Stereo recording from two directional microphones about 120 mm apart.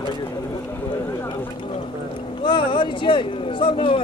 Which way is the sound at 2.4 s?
40° left (ahead or behind).